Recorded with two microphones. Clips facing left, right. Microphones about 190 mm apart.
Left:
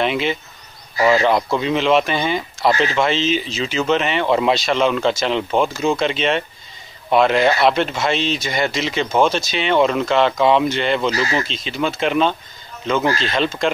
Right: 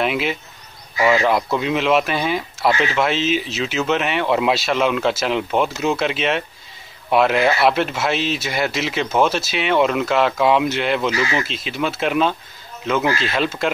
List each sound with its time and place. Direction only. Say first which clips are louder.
0.0 s insect: left 1 dB; 5° right (ahead or behind)
1.0 s speech: left 1 dB; centre (ahead or behind)
11.1 s speech: left 1 dB; 40° left (ahead or behind)
11.3 s speech: left 1 dB; 5° right (ahead or behind)